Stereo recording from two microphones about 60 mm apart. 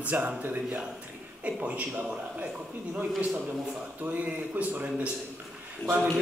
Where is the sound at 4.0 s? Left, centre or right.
Right.